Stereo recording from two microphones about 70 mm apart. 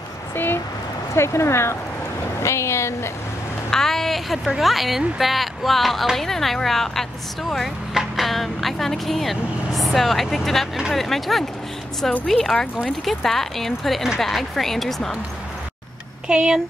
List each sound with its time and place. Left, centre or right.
1.1 s speech: left
3.7 s speech: centre
16.3 s speech: centre